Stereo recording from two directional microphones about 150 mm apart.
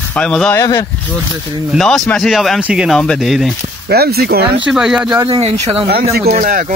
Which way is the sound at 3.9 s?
90° right.